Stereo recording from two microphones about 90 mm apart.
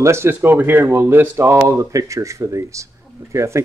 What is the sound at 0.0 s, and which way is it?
Speech, 30° right (ahead or behind).